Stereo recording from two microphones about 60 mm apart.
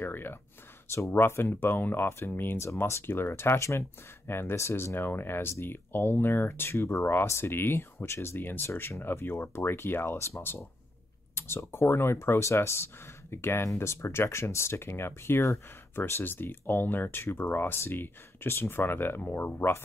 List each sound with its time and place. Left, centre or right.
0.0 s speech: left
3.5 s speech: left
4.3 s speech: left
8.4 s speech: left
10.1 s speech: left
11.3 s a sound: left
11.7 s speech: left